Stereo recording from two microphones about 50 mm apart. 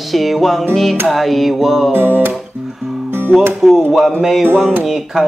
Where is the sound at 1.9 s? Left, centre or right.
Right.